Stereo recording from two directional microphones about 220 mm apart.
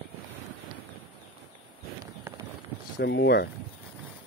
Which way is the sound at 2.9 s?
55° left (ahead or behind).